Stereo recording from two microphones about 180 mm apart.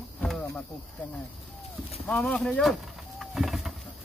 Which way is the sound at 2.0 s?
5° left (ahead or behind).